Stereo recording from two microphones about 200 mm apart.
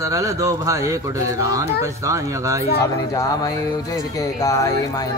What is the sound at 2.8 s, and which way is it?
Mantra, 15° left (ahead or behind).